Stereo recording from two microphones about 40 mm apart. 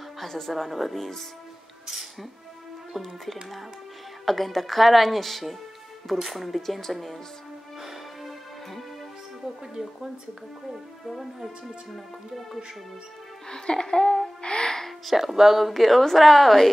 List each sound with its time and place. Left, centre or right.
0.2 s speech: centre
2.9 s speech: centre
4.3 s speech: centre
7.8 s music: centre
9.6 s speech: centre
13.5 s speech: left
14.4 s music: left
14.9 s speech: centre